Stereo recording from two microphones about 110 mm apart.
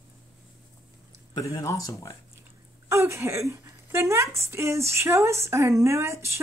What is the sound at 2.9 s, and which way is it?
A woman's voice, 25° right (ahead or behind).